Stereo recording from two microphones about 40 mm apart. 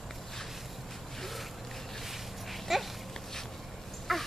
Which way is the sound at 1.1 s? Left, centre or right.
Centre.